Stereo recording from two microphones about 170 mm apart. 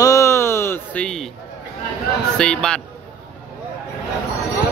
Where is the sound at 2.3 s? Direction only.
5° left (ahead or behind).